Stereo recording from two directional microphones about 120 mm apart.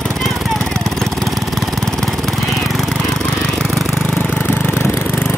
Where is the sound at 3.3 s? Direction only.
5° left (ahead or behind).